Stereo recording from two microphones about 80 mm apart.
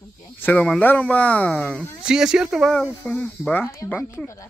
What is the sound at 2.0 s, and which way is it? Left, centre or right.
Speech, centre.